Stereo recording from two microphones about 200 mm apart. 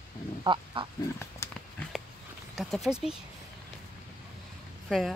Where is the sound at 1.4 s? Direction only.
15° left (ahead or behind).